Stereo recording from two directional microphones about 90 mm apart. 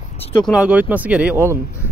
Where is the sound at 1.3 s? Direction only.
30° right (ahead or behind).